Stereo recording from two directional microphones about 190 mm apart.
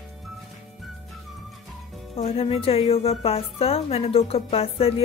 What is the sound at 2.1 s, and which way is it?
A woman's voice, 30° left (ahead or behind).